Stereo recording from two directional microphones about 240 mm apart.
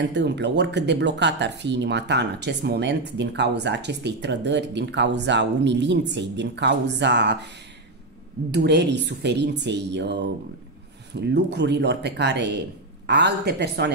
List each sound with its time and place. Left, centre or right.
0.0 s speech: right
8.5 s speech: right